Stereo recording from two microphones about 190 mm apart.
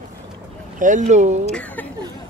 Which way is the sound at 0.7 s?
40° right (ahead or behind).